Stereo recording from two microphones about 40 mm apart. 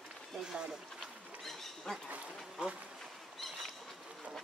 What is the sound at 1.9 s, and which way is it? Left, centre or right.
Speech, centre.